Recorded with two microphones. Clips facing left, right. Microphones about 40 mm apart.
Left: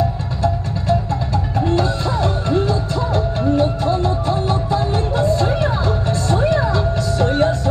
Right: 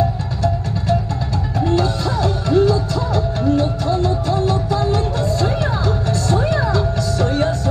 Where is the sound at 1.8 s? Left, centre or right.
Left.